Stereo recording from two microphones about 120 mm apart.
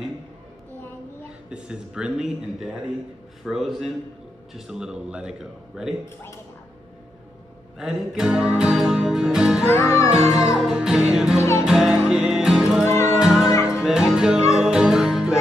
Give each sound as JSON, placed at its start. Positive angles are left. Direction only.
{"t": 1.5, "sound": "a man's voice", "side_deg": -10}
{"t": 7.8, "sound": "music", "side_deg": -5}
{"t": 9.7, "sound": "music", "side_deg": 25}
{"t": 10.2, "sound": "music", "side_deg": -5}
{"t": 11.3, "sound": "music", "side_deg": 25}
{"t": 11.6, "sound": "music", "side_deg": -5}
{"t": 12.8, "sound": "music", "side_deg": 20}
{"t": 13.2, "sound": "music", "side_deg": -5}